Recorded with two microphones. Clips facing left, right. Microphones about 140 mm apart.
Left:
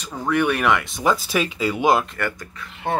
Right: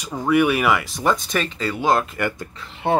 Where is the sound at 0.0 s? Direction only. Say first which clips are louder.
Right 3 dB; 10° right (ahead or behind); by 2.0 s 10° left (ahead or behind).